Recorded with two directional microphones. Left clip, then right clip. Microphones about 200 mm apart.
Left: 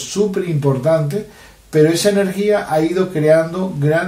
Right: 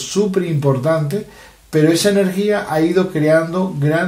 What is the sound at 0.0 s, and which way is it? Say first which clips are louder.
Speech: right 1 dB; 30° right (ahead or behind).